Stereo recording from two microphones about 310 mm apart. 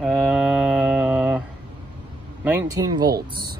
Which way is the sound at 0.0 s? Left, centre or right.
Centre.